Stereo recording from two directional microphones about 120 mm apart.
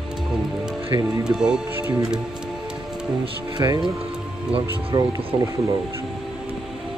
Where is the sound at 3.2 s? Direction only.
40° right (ahead or behind).